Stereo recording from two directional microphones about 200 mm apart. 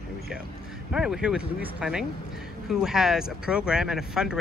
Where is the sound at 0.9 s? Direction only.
5° right (ahead or behind).